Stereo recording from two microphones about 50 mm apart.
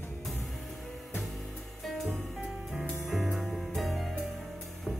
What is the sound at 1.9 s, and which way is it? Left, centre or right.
Music, centre.